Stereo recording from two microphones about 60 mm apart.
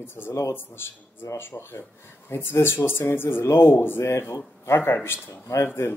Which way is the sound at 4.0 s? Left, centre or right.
Left.